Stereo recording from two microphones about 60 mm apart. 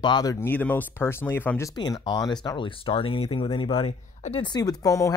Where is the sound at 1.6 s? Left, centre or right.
Left.